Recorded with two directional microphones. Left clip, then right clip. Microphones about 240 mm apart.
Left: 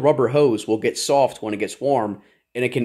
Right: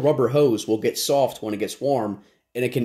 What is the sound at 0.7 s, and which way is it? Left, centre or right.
Speech, centre.